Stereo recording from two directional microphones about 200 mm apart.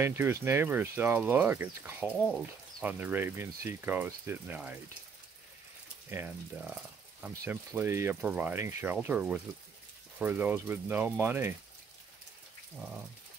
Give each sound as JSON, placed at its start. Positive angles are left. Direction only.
{"t": 0.0, "sound": "speech", "side_deg": -10}
{"t": 6.0, "sound": "speech", "side_deg": -10}